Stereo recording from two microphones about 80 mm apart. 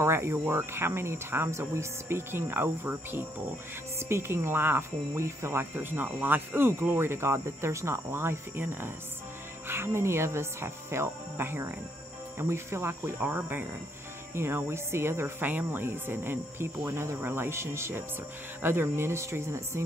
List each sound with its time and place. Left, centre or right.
0.0 s speech: right